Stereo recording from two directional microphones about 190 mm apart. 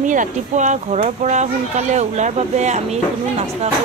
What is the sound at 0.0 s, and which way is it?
Speech, 40° right (ahead or behind).